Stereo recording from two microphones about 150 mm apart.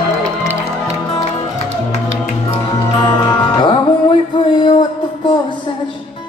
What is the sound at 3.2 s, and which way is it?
Music, 30° left (ahead or behind).